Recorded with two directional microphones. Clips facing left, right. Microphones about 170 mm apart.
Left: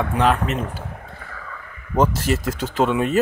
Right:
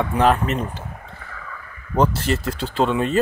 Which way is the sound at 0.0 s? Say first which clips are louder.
Right 1 dB; centre (ahead or behind).